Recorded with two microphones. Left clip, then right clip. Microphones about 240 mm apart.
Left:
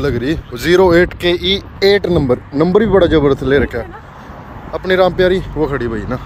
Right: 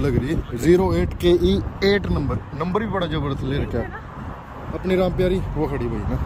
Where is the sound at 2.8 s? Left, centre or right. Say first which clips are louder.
Left 15 dB; centre.